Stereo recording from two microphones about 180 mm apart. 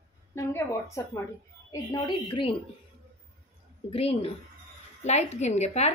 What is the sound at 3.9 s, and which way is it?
Speech, 35° left (ahead or behind).